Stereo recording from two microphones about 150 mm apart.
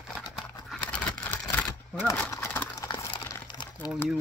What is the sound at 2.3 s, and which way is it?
Horse, 15° left (ahead or behind).